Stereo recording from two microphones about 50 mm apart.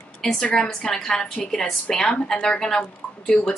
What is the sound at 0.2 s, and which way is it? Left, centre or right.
A woman's voice, centre.